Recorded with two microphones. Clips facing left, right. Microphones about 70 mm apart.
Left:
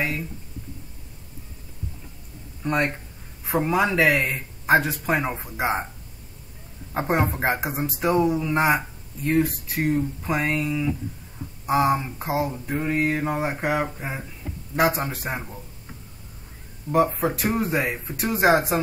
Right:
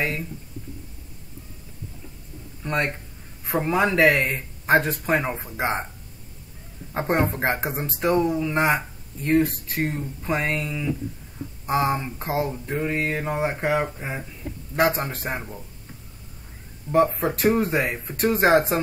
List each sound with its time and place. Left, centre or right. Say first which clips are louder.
2.6 s speech: left 2 dB; centre
3.4 s speech: even; centre
6.9 s speech: even; centre
13.0 s speech: left 3 dB; centre
13.3 s speech: right 1 dB; centre
16.9 s speech: right 1 dB; centre